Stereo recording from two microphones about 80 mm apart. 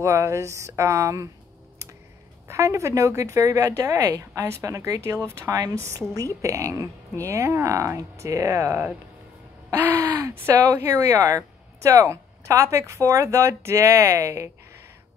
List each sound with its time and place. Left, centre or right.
0.0 s speech: right
2.4 s a woman's voice: right